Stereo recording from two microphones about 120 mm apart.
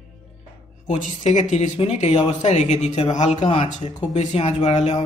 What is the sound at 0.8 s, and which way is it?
Speech, 85° left.